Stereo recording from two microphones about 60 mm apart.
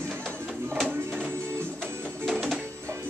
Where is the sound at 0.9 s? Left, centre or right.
Right.